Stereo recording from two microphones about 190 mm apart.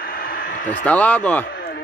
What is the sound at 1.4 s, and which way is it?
Chop, 50° left (ahead or behind).